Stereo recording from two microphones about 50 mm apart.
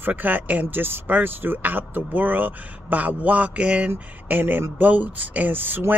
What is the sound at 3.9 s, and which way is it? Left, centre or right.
Speech, right.